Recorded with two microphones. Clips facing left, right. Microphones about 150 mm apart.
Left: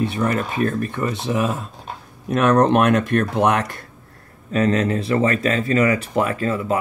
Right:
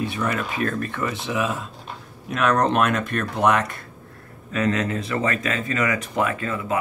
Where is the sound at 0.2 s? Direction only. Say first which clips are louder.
Left 4 dB; 40° left (ahead or behind).